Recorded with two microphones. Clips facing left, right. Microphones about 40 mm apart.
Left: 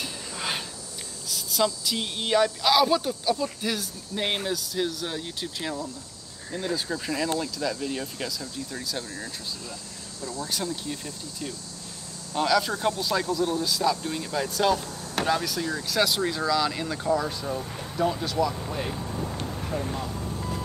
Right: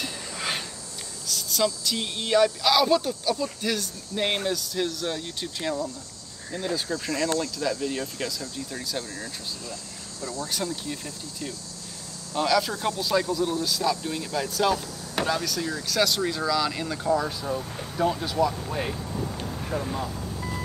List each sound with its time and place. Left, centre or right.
0.0 s a sound: centre
1.2 s speech: centre
10.4 s speech: centre
19.7 s vehicle: centre